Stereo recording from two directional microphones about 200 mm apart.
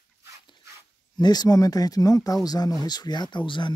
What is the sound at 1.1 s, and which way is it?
Speech, 20° left (ahead or behind).